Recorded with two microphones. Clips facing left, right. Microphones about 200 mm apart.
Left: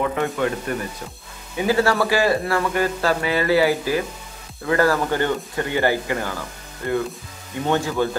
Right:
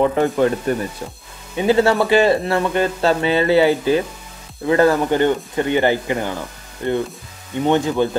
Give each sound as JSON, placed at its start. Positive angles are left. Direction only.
{"t": 0.0, "sound": "speech", "side_deg": -35}
{"t": 1.6, "sound": "speech", "side_deg": -25}
{"t": 7.6, "sound": "speech", "side_deg": -20}